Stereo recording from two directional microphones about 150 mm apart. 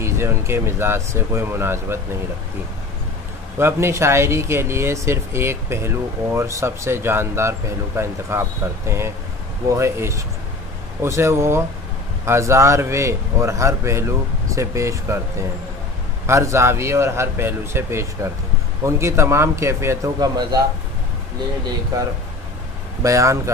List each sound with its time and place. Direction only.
0.0 s speech: 20° right (ahead or behind)
3.5 s a man's voice: 15° right (ahead or behind)
23.0 s a man's voice: 20° right (ahead or behind)